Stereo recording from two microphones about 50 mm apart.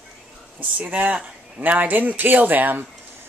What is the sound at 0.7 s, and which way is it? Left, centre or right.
Speech, right.